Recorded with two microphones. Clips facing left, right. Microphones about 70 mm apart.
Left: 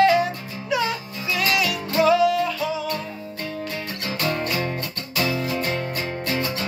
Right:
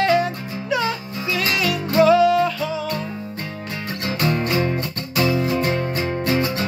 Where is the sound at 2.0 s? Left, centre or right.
Centre.